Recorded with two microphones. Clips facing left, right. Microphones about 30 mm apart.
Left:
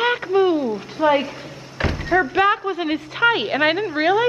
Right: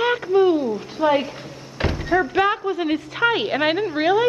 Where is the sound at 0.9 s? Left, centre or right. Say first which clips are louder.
Left 2 dB; centre.